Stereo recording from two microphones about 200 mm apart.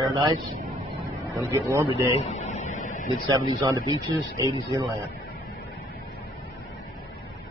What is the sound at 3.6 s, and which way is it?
Speech, 20° right (ahead or behind).